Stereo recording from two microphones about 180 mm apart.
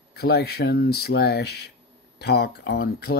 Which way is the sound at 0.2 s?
65° left (ahead or behind).